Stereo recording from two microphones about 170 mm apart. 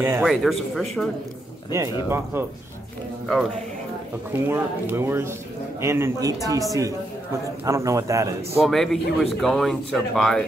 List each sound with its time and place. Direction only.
0.0 s speech: 10° right (ahead or behind)
0.3 s speech: centre (ahead or behind)
2.0 s speech: 15° right (ahead or behind)
4.3 s a man's voice: 15° right (ahead or behind)
8.5 s speech: centre (ahead or behind)